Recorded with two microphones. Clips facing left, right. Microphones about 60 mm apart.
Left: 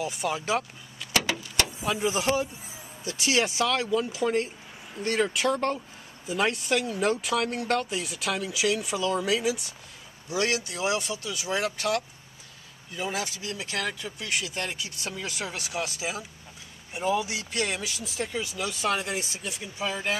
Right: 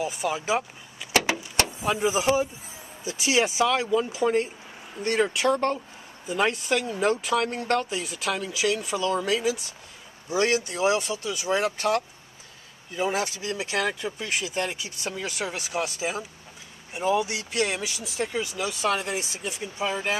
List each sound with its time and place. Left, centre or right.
0.0 s speech: centre
1.1 s vehicle: right
1.8 s speech: centre
10.9 s speech: right
11.2 s speech: centre
11.6 s speech: right
13.1 s speech: right
15.1 s speech: centre
19.4 s speech: centre